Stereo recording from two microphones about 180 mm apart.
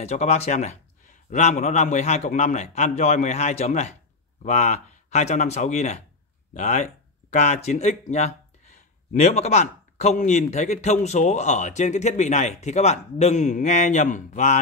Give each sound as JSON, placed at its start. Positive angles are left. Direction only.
{"t": 0.0, "sound": "speech", "side_deg": 35}